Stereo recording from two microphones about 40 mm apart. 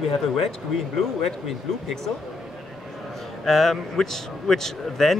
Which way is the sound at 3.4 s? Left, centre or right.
Centre.